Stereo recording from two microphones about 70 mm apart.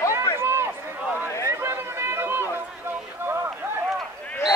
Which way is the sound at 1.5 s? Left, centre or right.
Right.